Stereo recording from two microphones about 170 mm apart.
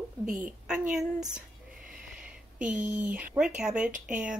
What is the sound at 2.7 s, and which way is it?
A woman's voice, 5° right (ahead or behind).